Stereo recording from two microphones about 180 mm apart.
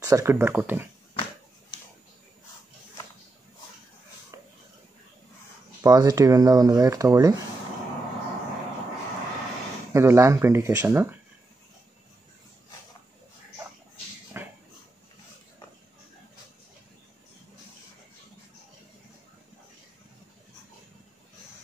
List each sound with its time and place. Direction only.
0.0 s speech: 15° right (ahead or behind)
5.8 s speech: 20° right (ahead or behind)
9.9 s speech: 15° right (ahead or behind)
14.3 s a sound: 10° right (ahead or behind)